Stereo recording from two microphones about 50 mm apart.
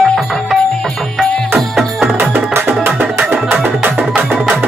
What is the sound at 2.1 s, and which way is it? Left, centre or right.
Music, right.